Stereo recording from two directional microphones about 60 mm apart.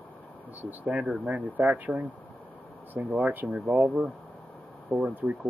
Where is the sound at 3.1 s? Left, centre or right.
Right.